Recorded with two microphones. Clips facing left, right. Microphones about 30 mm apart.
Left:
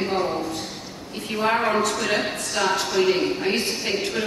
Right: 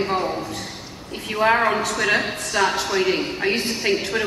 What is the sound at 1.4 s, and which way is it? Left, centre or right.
A woman's voice, right.